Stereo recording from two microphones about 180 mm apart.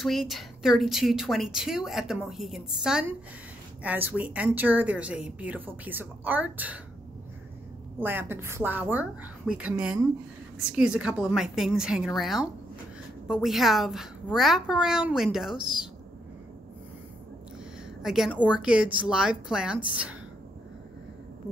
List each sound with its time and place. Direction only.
0.0 s a woman's voice: centre (ahead or behind)
8.0 s a woman's voice: 10° right (ahead or behind)
18.0 s speech: centre (ahead or behind)